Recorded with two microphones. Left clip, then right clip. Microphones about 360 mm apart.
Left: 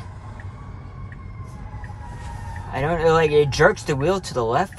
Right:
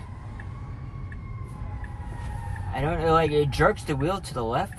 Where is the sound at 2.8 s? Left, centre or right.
Left.